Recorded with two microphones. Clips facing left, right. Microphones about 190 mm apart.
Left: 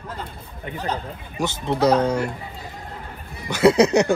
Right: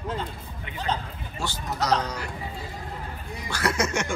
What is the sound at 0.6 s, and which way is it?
Speech, 45° left (ahead or behind).